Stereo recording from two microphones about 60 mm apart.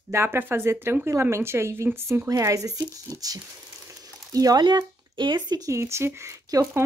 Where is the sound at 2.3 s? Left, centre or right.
Right.